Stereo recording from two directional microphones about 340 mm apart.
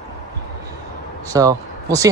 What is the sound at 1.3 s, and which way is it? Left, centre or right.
Speech, centre.